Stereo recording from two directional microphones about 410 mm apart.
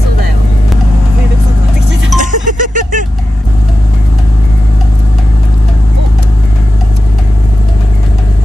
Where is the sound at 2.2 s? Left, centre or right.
Centre.